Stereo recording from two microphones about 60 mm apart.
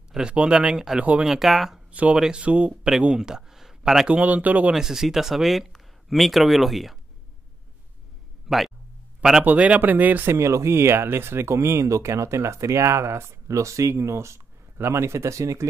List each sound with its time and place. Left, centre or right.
0.1 s speech: centre
1.9 s speech: right
2.1 s speech: centre
2.4 s a man's voice: right; by 4.1 s centre
4.1 s speech: right
4.7 s speech: centre
8.5 s speech: centre
9.4 s speech: right
10.2 s speech: right